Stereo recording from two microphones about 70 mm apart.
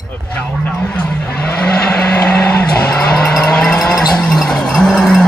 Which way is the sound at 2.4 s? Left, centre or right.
Centre.